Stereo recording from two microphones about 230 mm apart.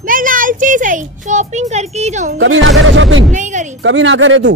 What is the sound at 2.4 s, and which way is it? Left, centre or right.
A woman's voice, right.